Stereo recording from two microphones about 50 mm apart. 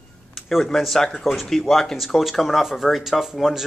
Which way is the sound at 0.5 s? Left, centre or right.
Centre.